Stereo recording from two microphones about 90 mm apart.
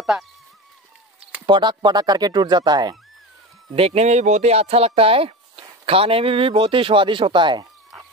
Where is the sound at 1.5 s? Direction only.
55° right (ahead or behind).